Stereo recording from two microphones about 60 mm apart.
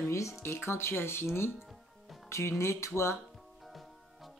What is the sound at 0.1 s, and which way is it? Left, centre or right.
Speech, left.